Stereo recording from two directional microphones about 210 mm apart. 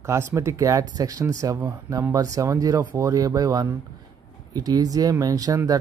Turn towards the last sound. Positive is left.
turn(degrees=-15)  # may be behind; listen again after turning